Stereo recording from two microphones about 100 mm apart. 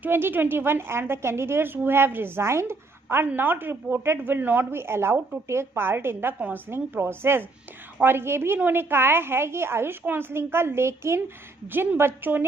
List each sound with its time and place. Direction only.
0.0 s a woman's voice: 20° right (ahead or behind)